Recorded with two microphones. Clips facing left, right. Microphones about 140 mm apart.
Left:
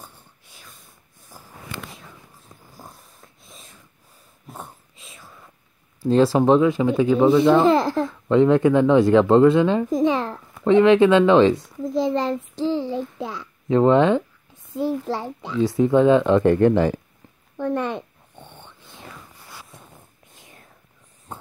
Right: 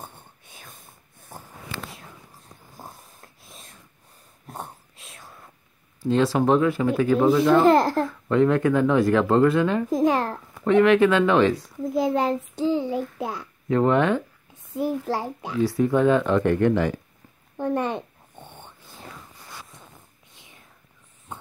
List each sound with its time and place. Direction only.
0.6 s whispering: 50° right (ahead or behind)
2.9 s wheeze: centre (ahead or behind)
4.5 s whispering: centre (ahead or behind)
6.0 s speech: 35° left (ahead or behind)
6.6 s speech: 15° left (ahead or behind)
7.2 s speech: centre (ahead or behind)
8.1 s speech: 25° left (ahead or behind)
9.8 s speech: centre (ahead or behind)
10.6 s speech: 25° left (ahead or behind)
11.5 s a child's voice: 5° right (ahead or behind)
13.7 s speech: 25° left (ahead or behind)
15.0 s a child's voice: 10° right (ahead or behind)
15.6 s speech: 20° left (ahead or behind)
17.8 s dog: 15° right (ahead or behind)